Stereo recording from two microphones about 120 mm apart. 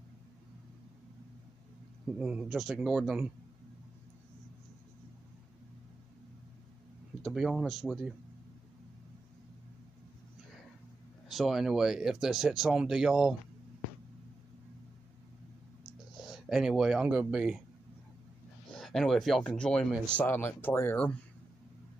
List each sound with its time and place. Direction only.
2.1 s speech: 10° right (ahead or behind)
7.2 s speech: centre (ahead or behind)
11.2 s speech: centre (ahead or behind)
16.2 s speech: centre (ahead or behind)
18.8 s speech: centre (ahead or behind)